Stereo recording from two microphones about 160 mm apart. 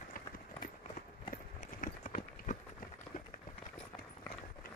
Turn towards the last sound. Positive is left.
turn(degrees=60)  # may be behind; listen again after turning